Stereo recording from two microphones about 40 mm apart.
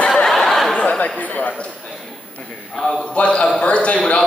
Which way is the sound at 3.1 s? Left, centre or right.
Left.